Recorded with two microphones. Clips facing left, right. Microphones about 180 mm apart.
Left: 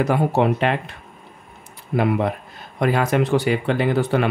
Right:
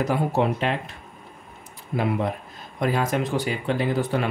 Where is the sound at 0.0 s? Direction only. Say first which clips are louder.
Left 4 dB; 65° left (ahead or behind).